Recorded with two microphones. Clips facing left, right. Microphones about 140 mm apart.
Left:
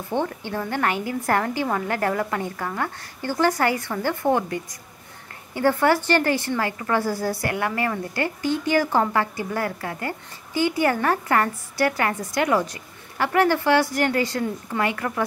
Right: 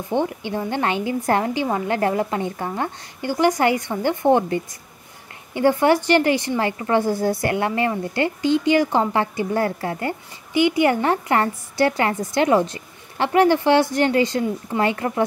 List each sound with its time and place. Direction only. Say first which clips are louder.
0.1 s a woman's voice: right 3 dB; 15° right (ahead or behind)